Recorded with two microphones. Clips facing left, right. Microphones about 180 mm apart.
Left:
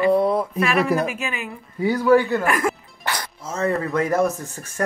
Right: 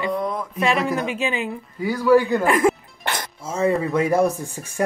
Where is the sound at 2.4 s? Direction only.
25° right (ahead or behind).